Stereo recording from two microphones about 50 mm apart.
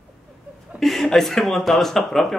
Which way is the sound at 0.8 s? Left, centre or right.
Centre.